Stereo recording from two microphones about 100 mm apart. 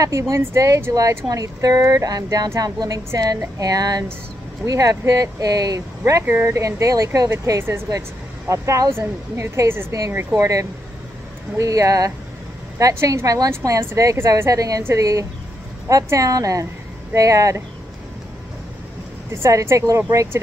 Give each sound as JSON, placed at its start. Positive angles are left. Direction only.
{"t": 0.0, "sound": "a woman's voice", "side_deg": -30}
{"t": 19.3, "sound": "speech", "side_deg": -25}